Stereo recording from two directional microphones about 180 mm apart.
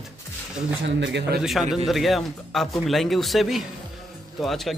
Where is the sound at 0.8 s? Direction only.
85° right.